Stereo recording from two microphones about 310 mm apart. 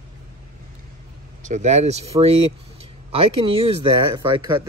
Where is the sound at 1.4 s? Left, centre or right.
Right.